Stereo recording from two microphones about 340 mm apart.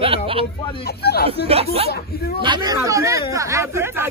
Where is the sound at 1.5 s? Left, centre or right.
Centre.